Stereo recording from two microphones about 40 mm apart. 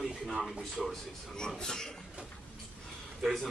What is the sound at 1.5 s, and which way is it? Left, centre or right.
Speech, centre.